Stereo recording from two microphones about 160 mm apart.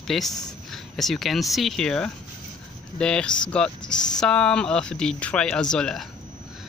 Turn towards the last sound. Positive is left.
turn(degrees=5)  # may be behind; listen again after turning